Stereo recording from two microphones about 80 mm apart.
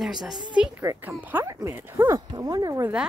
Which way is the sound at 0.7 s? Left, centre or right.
Right.